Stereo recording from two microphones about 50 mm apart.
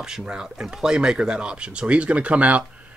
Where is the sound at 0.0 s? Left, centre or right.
Centre.